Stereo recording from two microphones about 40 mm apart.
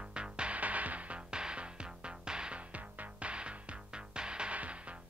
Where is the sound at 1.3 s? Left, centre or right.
Right.